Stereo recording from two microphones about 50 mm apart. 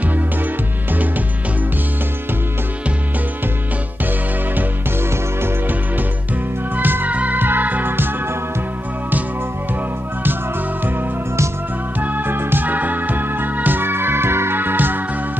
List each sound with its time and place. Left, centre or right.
6.8 s music: right
12.0 s music: right
14.6 s music: right